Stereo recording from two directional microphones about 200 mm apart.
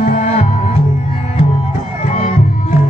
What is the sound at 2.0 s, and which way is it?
Music, 40° left (ahead or behind).